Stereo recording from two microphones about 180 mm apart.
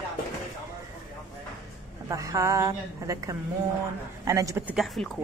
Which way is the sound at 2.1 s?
15° right (ahead or behind).